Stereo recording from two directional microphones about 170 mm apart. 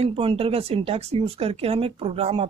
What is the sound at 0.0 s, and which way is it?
Speech, 30° right (ahead or behind).